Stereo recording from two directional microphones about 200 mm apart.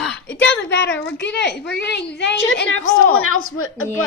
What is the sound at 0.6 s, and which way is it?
A woman's voice, 65° left (ahead or behind).